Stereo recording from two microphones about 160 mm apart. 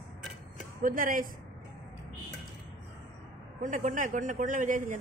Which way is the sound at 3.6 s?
50° right (ahead or behind).